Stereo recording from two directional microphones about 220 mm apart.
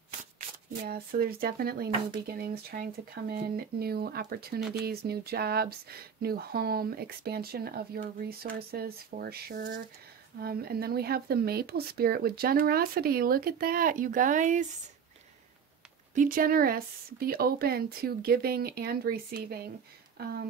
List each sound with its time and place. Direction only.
0.8 s speech: 45° right (ahead or behind)
16.2 s speech: 40° right (ahead or behind)